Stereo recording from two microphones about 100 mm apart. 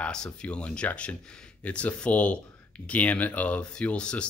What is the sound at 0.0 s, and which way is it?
Speech, 10° left (ahead or behind).